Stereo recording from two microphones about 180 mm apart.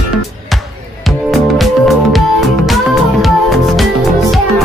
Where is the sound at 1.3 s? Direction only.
Centre (ahead or behind).